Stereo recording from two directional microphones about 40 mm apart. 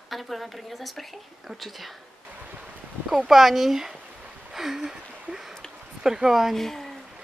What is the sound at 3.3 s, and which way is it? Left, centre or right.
Speech, centre.